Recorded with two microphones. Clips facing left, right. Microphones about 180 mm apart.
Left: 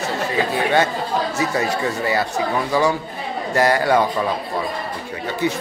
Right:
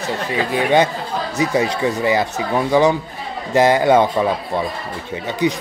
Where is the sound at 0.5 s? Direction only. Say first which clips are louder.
Right 5 dB; 15° right (ahead or behind).